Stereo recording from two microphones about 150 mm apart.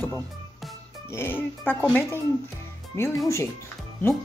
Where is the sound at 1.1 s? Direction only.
15° left (ahead or behind).